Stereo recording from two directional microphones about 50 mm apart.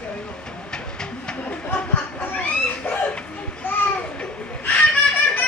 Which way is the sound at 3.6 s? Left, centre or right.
Left.